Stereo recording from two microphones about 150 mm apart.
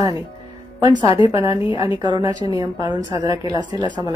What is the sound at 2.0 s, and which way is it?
Speech, 30° right (ahead or behind).